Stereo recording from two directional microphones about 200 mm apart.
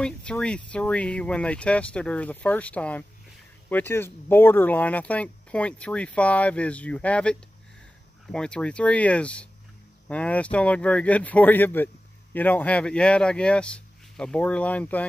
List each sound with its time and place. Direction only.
0.0 s speech: 5° left (ahead or behind)